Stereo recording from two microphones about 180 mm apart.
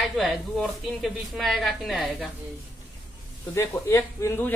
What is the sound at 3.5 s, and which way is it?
A woman's voice, 15° left (ahead or behind).